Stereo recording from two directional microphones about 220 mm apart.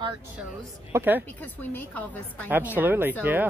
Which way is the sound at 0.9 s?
10° right (ahead or behind).